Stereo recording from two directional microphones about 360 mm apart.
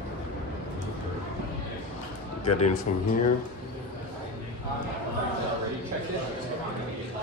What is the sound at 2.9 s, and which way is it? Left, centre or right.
Speech, left.